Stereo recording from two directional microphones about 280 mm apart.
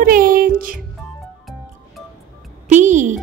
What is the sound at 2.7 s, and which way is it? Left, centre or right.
Speech, right.